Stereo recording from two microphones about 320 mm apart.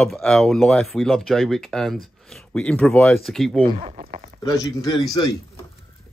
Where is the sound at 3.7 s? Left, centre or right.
Right.